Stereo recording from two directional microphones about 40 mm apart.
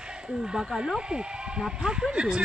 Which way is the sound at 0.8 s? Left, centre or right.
Centre.